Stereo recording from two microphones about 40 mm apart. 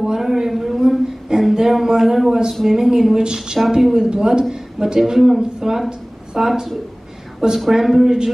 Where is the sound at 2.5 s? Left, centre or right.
Centre.